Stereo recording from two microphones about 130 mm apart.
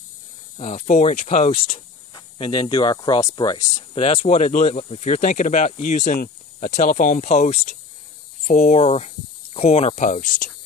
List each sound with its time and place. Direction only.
0.6 s speech: 60° left (ahead or behind); by 3.8 s 25° left (ahead or behind)
3.9 s speech: 45° left (ahead or behind); by 10.5 s 70° left (ahead or behind)